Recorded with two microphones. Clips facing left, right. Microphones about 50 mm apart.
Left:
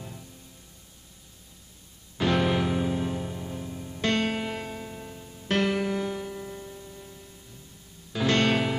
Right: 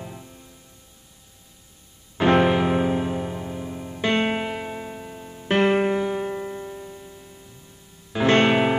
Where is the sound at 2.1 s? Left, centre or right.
Right.